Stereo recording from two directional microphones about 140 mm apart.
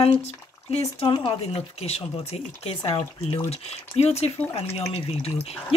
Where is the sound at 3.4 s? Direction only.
50° left (ahead or behind).